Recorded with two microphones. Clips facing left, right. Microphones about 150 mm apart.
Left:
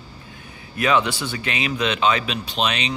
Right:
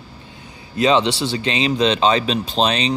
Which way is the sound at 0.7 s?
25° right (ahead or behind).